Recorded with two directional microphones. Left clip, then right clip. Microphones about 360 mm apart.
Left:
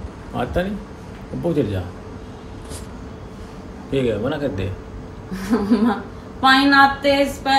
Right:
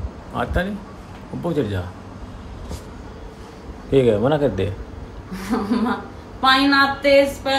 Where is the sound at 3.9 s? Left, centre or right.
Centre.